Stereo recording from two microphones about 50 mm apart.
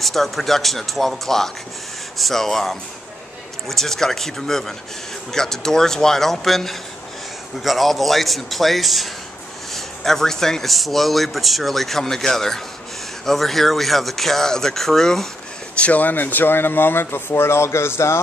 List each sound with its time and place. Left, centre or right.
0.0 s a man's voice: centre
15.7 s speech: left